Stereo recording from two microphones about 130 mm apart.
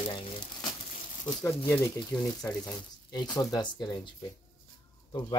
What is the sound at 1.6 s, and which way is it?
Speech, 15° left (ahead or behind).